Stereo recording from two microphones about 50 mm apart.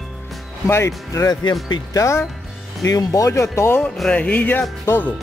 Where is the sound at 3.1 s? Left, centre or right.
Left.